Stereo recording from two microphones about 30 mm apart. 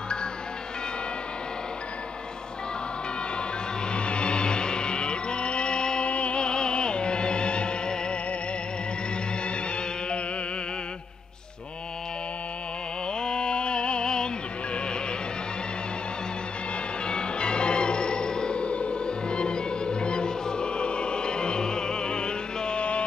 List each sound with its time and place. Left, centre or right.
3.9 s music: left
6.0 s music: left
13.2 s music: left
17.0 s music: left